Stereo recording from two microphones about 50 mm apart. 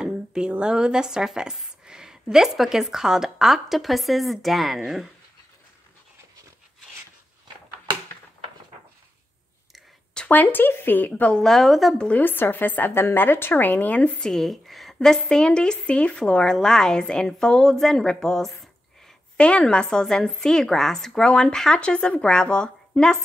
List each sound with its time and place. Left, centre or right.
0.0 s a sound: centre
0.5 s a woman's voice: centre
10.3 s speech: left
11.0 s speech: left
11.3 s a woman's voice: centre
12.3 s speech: left
14.2 s a sound: centre
15.0 s a woman's voice: centre
19.3 s a woman's voice: left